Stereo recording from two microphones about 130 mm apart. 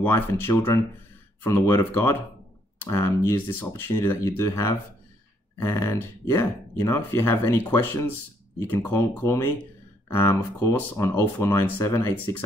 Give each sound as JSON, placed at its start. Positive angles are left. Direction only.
{"t": 0.0, "sound": "speech", "side_deg": 15}